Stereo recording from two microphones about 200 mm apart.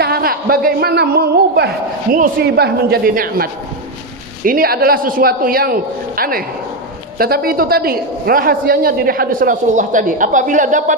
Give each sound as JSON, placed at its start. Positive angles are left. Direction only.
{"t": 0.0, "sound": "a woman's voice", "side_deg": -50}
{"t": 4.5, "sound": "a woman's voice", "side_deg": -45}